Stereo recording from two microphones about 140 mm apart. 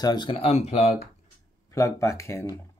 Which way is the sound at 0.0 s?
30° left (ahead or behind).